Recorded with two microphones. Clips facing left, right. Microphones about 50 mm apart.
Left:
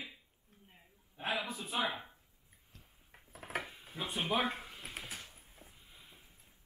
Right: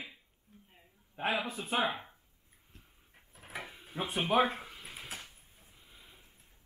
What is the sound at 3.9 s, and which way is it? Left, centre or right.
Speech, right.